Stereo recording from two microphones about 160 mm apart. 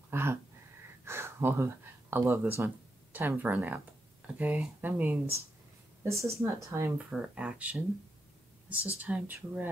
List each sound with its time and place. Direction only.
0.1 s speech: 15° right (ahead or behind)
7.1 s speech: 5° right (ahead or behind)